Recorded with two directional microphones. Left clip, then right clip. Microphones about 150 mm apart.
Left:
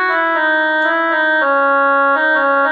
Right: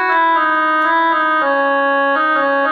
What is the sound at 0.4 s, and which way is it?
Organ, 40° right (ahead or behind).